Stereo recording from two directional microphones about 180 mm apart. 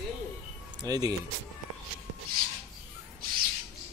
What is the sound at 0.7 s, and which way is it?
Speech, 25° right (ahead or behind).